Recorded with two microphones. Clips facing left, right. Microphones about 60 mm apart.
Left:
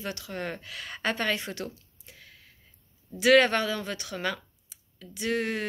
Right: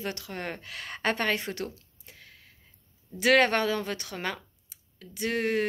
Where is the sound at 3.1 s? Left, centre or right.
Right.